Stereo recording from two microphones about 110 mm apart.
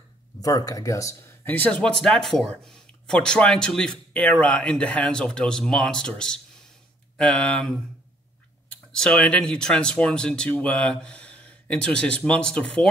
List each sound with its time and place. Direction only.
0.4 s speech: 35° left (ahead or behind); by 12.9 s 5° left (ahead or behind)